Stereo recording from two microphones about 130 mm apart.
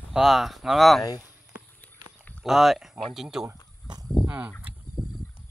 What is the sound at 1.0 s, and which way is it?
Speech, 25° left (ahead or behind).